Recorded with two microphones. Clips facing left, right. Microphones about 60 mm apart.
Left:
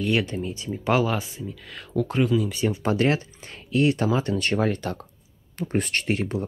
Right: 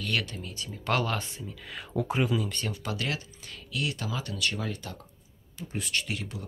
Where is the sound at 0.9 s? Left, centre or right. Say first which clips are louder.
Left 6 dB; centre.